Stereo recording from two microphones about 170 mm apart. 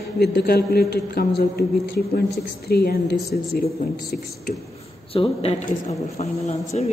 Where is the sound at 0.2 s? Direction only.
65° left (ahead or behind).